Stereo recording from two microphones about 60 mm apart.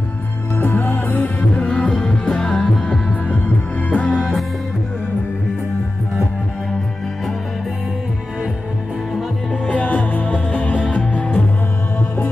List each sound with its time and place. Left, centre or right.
0.6 s music: left
1.7 s music: centre
2.9 s music: left
9.7 s music: left